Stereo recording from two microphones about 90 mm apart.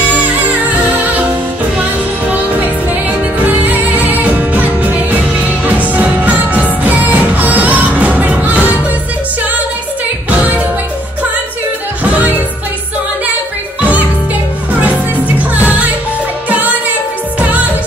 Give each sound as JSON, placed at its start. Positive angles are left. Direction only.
{"t": 0.1, "sound": "music", "side_deg": -15}
{"t": 3.6, "sound": "music", "side_deg": -20}
{"t": 5.9, "sound": "music", "side_deg": -20}
{"t": 12.0, "sound": "music", "side_deg": -15}
{"t": 13.7, "sound": "music", "side_deg": -15}
{"t": 17.4, "sound": "music", "side_deg": -15}